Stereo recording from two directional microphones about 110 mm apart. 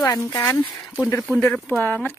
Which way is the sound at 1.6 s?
15° left (ahead or behind).